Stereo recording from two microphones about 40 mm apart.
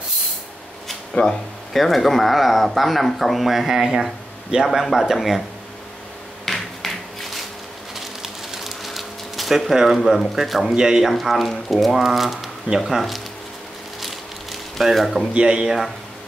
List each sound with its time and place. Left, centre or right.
1.2 s speech: left
1.7 s speech: centre
4.5 s speech: right
4.9 s speech: centre
6.4 s a sound: centre
7.9 s a sound: centre
9.9 s speech: centre
10.7 s speech: centre
11.1 s speech: centre
14.0 s a sound: centre
15.3 s speech: right